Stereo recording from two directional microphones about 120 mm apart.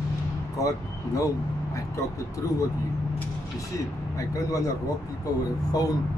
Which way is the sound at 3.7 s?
30° left (ahead or behind).